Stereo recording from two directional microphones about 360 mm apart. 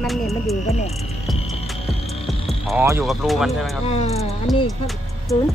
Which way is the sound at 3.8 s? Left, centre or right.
Centre.